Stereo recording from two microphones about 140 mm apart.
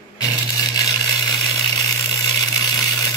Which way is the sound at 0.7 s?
30° left (ahead or behind).